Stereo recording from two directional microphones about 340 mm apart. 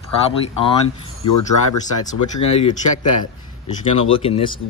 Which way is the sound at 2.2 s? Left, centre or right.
Left.